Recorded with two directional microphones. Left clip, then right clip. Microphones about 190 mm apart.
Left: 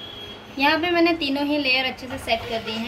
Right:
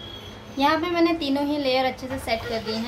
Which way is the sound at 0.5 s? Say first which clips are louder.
Left 2 dB; 15° right (ahead or behind).